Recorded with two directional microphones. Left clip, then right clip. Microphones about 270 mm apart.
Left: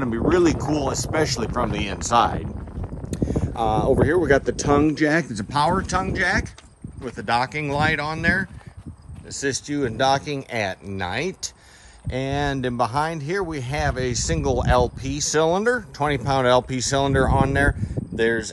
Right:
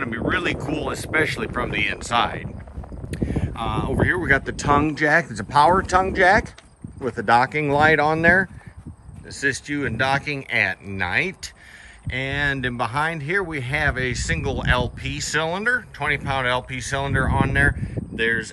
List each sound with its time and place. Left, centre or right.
0.0 s speech: centre
9.3 s speech: centre